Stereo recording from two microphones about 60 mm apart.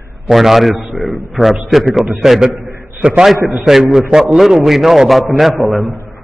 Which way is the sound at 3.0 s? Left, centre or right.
Centre.